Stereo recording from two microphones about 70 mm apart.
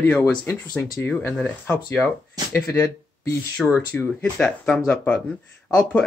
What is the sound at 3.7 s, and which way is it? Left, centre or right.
Speech, left.